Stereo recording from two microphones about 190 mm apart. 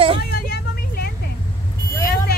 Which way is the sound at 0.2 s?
55° left (ahead or behind).